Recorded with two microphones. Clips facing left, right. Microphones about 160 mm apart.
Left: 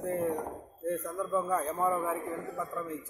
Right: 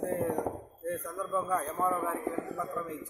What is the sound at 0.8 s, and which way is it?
A man's voice, 10° left (ahead or behind).